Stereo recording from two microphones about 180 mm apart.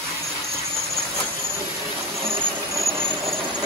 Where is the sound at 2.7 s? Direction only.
15° right (ahead or behind).